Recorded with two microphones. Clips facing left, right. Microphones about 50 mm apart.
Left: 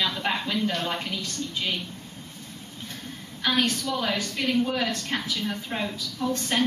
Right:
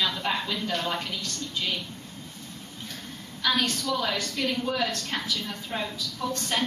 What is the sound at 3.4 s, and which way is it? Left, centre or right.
A woman's voice, centre.